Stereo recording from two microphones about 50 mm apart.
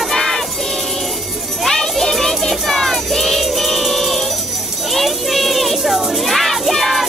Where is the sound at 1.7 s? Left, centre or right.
Centre.